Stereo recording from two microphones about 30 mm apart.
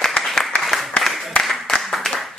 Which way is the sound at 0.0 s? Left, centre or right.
Left.